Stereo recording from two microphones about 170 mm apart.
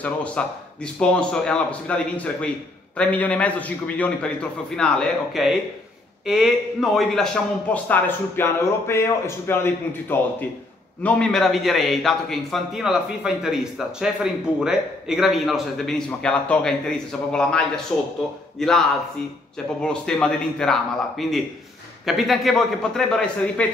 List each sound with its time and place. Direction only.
0.0 s a man's voice: 10° left (ahead or behind)
7.7 s a man's voice: 10° left (ahead or behind)